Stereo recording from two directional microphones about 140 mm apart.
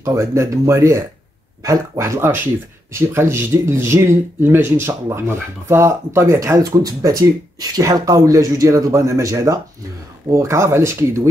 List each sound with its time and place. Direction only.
0.0 s speech: 20° right (ahead or behind)